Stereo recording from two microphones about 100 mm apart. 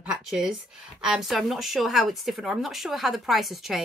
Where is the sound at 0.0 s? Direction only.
5° right (ahead or behind).